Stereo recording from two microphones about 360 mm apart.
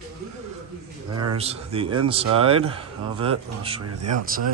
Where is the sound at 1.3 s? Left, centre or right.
Centre.